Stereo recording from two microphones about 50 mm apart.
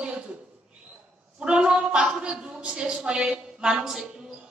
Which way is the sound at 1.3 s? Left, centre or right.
Centre.